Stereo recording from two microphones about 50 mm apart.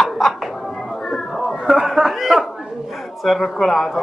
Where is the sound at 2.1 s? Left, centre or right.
Centre.